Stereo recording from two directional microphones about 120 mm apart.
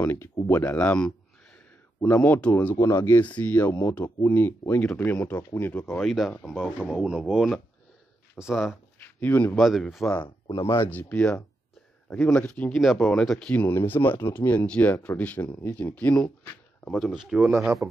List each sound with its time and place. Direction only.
0.0 s speech: 20° left (ahead or behind); by 8.7 s 5° right (ahead or behind)
8.9 s speech: 15° left (ahead or behind)
9.6 s speech: centre (ahead or behind)
10.8 s speech: 15° left (ahead or behind)
17.0 s speech: 5° right (ahead or behind)